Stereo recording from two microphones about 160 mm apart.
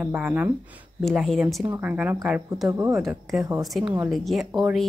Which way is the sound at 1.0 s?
Centre (ahead or behind).